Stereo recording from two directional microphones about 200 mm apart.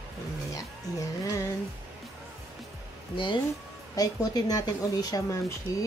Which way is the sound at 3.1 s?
25° left (ahead or behind).